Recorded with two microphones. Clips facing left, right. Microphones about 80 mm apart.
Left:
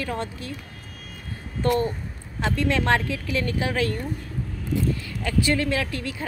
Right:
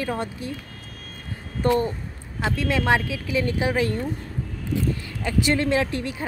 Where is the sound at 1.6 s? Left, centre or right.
Centre.